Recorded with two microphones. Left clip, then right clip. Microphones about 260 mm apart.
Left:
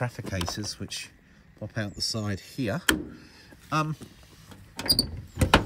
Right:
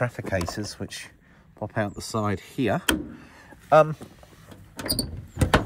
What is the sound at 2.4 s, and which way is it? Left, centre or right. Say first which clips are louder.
Speech: right 6 dB; centre.